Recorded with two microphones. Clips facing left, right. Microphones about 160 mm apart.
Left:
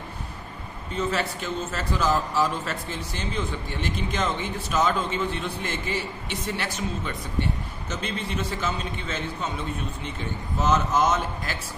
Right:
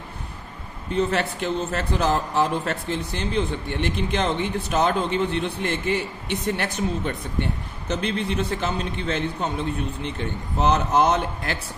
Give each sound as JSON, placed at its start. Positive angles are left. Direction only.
{"t": 0.9, "sound": "a man's voice", "side_deg": -60}